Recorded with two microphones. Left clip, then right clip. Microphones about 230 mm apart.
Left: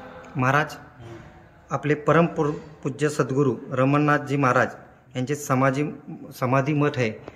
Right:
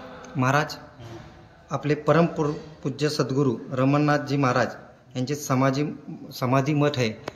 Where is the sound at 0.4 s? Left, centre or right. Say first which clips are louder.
Left 1 dB; centre.